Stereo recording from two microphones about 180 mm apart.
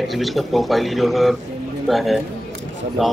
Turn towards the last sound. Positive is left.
turn(degrees=0)  # may be behind; listen again after turning